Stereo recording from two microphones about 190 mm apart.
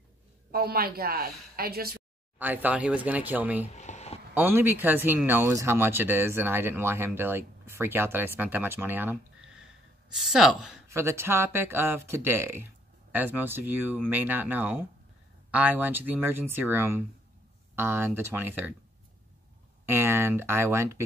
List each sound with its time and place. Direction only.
0.5 s a woman's voice: 55° right (ahead or behind)
2.3 s speech: 10° right (ahead or behind)
3.6 s a sound: 35° left (ahead or behind)
4.3 s speech: 10° right (ahead or behind)
10.9 s speech: 15° right (ahead or behind)
19.9 s speech: 10° right (ahead or behind)